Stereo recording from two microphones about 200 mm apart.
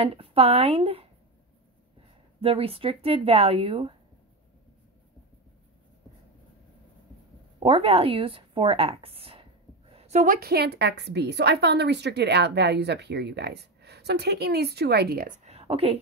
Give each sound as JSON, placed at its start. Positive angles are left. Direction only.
{"t": 0.0, "sound": "a woman's voice", "side_deg": -30}
{"t": 2.4, "sound": "a woman's voice", "side_deg": -30}
{"t": 7.6, "sound": "a woman's voice", "side_deg": -30}
{"t": 15.4, "sound": "a sound", "side_deg": -30}